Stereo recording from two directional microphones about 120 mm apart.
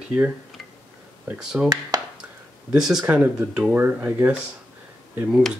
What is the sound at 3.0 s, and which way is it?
Speech, 15° right (ahead or behind).